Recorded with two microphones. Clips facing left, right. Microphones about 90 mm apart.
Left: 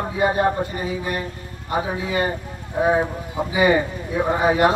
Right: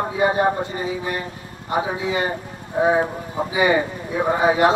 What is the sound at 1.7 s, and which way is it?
Speech, 20° right (ahead or behind).